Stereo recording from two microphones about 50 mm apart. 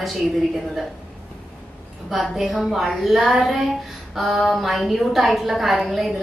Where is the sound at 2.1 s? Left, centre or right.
Centre.